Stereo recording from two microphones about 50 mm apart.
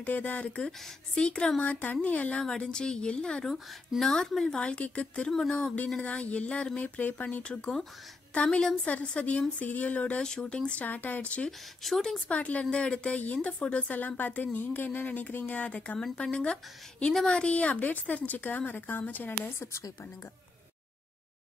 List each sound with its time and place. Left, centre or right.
0.0 s a woman's voice: left
0.6 s a woman's voice: centre
1.6 s a woman's voice: left
2.3 s a woman's voice: centre
4.6 s speech: left
5.3 s a woman's voice: centre
6.0 s a woman's voice: left